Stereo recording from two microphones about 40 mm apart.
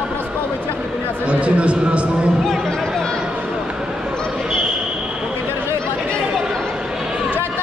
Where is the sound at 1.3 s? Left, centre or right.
Right.